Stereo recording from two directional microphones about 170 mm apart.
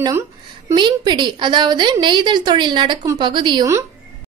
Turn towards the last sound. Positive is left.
turn(degrees=-20)  # may be behind; listen again after turning